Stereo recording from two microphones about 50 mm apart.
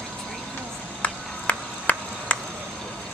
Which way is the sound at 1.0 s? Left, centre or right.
Left.